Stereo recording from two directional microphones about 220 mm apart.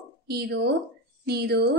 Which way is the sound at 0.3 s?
45° right (ahead or behind).